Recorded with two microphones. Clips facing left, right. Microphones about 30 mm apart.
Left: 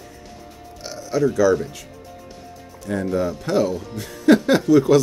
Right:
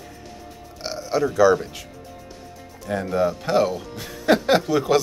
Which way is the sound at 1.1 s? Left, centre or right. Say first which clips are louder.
Left 3 dB; centre.